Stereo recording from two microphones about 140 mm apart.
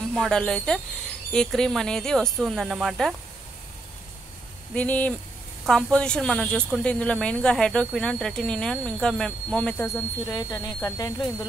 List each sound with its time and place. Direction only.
0.1 s speech: 5° left (ahead or behind)
4.7 s speech: 10° left (ahead or behind); by 11.2 s 25° left (ahead or behind)